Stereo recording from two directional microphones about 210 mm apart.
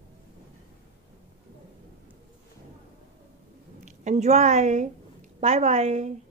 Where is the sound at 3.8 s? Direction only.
35° right (ahead or behind).